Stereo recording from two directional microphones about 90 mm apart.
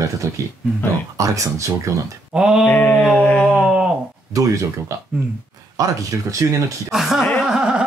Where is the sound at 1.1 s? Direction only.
40° right (ahead or behind).